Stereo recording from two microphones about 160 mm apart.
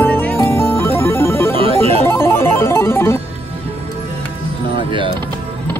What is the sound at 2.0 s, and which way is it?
Music, 15° left (ahead or behind).